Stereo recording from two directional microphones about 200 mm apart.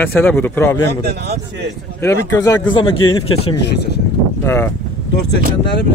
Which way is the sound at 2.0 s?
15° left (ahead or behind).